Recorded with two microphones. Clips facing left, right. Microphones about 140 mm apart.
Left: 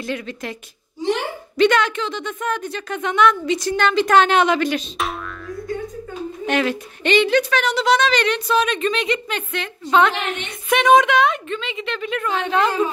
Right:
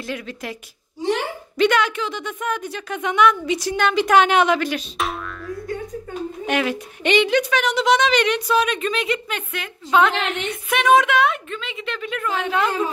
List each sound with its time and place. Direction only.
0.0 s a woman's voice: 5° right (ahead or behind)
1.6 s speech: 5° right (ahead or behind)
10.1 s a woman's voice: 90° right
10.7 s a woman's voice: 5° right (ahead or behind)